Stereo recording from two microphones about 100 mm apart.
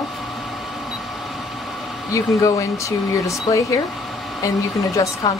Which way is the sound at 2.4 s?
30° left (ahead or behind).